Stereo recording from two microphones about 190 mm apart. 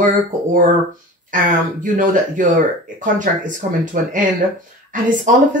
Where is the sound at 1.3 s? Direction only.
45° right (ahead or behind).